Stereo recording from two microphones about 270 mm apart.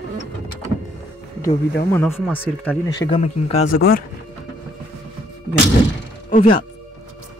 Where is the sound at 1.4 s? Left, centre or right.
Centre.